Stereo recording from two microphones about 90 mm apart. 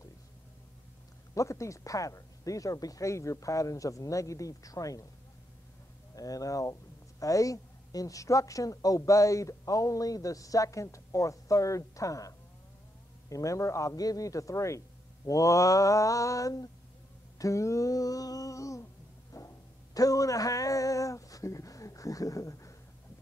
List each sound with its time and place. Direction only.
1.3 s speech: 35° left (ahead or behind)
6.1 s speech: 40° left (ahead or behind)
19.3 s a sound: 40° left (ahead or behind)